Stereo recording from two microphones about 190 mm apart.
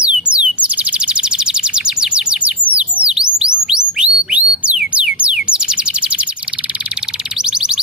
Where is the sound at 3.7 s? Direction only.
5° right (ahead or behind).